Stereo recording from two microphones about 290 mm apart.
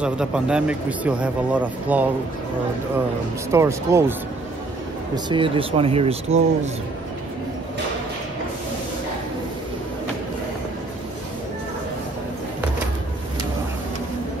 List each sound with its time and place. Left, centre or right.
0.0 s speech: centre
3.5 s speech: centre
5.1 s speech: centre